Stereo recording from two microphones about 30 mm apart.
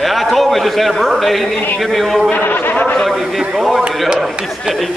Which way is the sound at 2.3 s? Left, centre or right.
Left.